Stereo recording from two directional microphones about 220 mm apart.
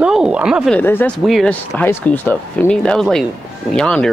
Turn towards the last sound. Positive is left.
turn(degrees=5)  # may be behind; listen again after turning